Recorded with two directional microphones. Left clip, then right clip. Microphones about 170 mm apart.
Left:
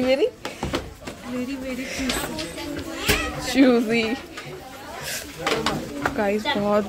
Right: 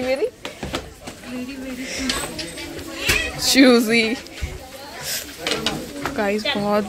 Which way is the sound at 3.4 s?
15° right (ahead or behind).